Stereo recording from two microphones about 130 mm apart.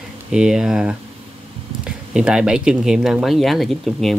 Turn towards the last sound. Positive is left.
turn(degrees=0)  # may be behind; listen again after turning